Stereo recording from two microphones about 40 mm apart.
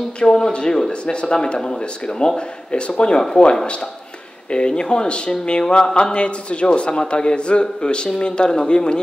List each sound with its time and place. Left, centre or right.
0.2 s speech: left